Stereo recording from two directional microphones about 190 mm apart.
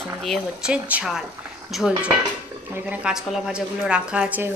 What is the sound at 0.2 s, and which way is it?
A woman's voice, centre (ahead or behind).